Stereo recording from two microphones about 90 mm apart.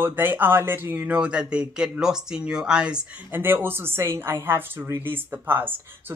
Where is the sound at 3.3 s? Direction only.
25° right (ahead or behind).